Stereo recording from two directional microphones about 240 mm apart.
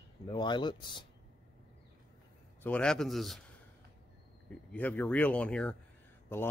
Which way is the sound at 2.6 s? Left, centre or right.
Centre.